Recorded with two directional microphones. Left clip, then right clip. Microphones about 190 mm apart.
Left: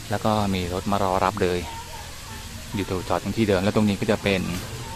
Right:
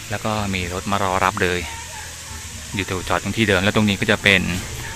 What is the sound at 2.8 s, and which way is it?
Speech, 5° left (ahead or behind).